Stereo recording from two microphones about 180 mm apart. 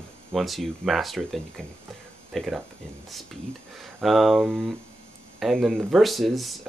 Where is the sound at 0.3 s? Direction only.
Centre (ahead or behind).